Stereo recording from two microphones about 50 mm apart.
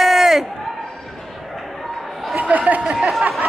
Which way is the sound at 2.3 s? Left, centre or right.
Right.